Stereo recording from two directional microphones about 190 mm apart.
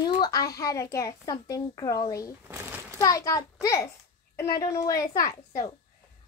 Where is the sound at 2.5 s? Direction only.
15° right (ahead or behind).